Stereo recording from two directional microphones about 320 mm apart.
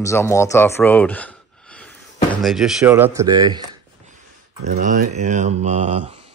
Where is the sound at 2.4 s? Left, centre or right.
Centre.